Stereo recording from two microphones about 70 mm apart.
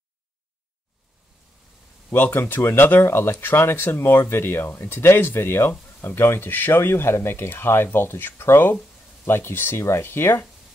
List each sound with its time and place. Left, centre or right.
2.1 s speech: left